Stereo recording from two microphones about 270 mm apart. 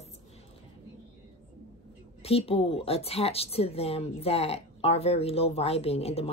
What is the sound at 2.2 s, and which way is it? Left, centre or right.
Speech, left.